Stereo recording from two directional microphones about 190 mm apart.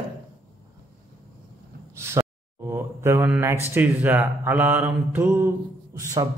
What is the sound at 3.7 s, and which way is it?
Speech, 10° right (ahead or behind).